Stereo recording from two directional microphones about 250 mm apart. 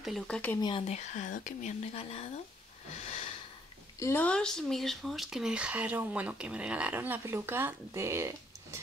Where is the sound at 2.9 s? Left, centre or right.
Left.